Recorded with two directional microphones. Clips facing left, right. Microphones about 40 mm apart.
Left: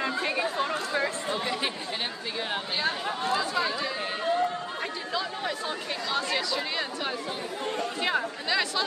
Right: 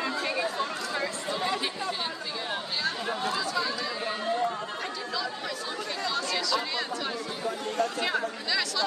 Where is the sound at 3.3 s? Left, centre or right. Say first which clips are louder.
Left 4 dB; left.